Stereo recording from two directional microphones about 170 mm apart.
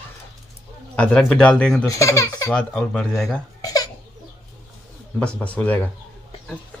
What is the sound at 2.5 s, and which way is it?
Speech, 5° left (ahead or behind).